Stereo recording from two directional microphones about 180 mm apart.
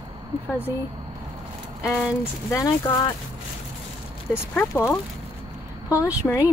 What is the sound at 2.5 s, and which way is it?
Speech, 20° left (ahead or behind).